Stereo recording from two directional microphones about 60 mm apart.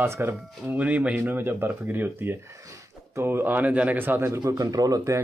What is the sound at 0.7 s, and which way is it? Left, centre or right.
Speech, right.